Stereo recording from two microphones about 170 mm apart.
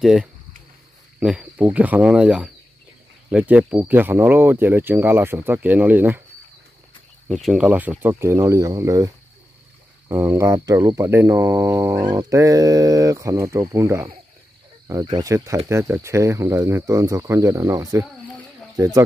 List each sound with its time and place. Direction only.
0.0 s speech: centre (ahead or behind)
7.2 s speech: centre (ahead or behind); by 19.0 s 20° right (ahead or behind)